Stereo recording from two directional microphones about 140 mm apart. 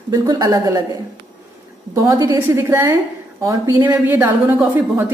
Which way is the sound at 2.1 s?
25° right (ahead or behind).